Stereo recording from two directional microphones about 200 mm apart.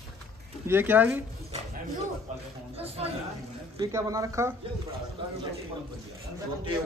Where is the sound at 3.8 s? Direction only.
20° right (ahead or behind).